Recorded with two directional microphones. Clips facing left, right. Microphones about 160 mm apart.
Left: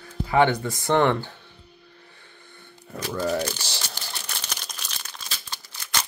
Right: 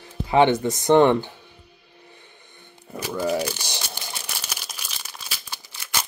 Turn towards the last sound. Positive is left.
turn(degrees=-10)  # may be behind; listen again after turning